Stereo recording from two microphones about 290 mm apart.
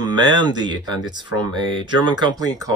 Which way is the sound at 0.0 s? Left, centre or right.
Centre.